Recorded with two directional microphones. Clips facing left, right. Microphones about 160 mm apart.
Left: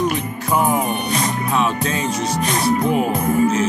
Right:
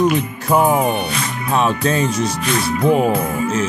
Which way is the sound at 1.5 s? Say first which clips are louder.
Right 6 dB; 40° right (ahead or behind).